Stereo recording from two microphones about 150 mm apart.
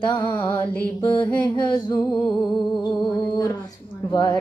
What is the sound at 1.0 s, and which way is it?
Music, 35° left (ahead or behind).